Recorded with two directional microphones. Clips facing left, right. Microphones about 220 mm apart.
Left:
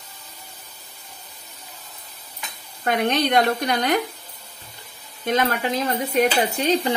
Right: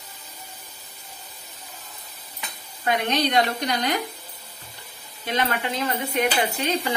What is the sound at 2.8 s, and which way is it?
A woman's voice, 55° left (ahead or behind).